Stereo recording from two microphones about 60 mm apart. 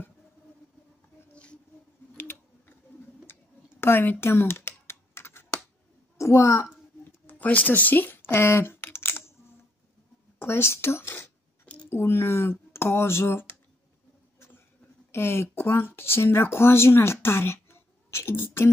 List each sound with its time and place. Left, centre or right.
1.3 s a sound: centre
3.3 s tick-tock: left
3.8 s computer keyboard: left
6.1 s a woman's voice: left
7.2 s speech: left
8.5 s a sound: left
10.4 s speech: left
15.0 s speech: left